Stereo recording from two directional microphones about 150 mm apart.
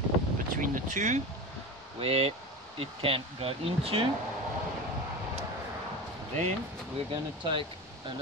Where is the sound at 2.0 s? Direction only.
40° right (ahead or behind).